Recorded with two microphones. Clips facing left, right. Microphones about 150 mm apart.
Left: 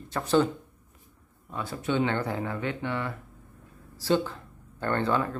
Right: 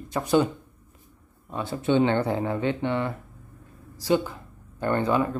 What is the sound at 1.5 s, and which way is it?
Speech, 25° right (ahead or behind).